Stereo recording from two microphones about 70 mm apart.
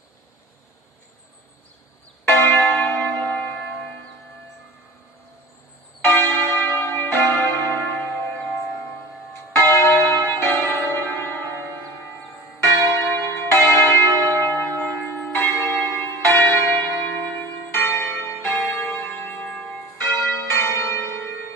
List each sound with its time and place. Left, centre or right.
2.2 s church bell: left
6.0 s church bell: left
7.0 s church bell: left
9.3 s church bell: left
11.5 s church bell: right
12.5 s church bell: left
15.3 s church bell: left
19.4 s church bell: centre
20.2 s church bell: left